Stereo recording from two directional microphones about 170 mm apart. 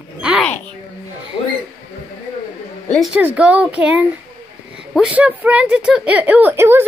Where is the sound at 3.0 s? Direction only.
10° right (ahead or behind).